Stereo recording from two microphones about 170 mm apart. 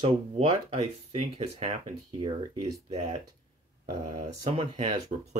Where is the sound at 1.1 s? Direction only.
35° right (ahead or behind).